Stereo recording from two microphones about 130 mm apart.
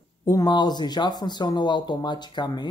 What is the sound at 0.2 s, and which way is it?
Speech, 25° left (ahead or behind).